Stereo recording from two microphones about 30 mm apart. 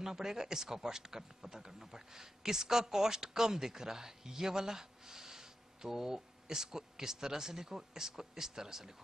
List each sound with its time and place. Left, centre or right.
0.0 s a man's voice: centre